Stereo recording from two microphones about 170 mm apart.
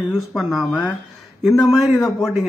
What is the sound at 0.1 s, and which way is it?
A man's voice, centre (ahead or behind).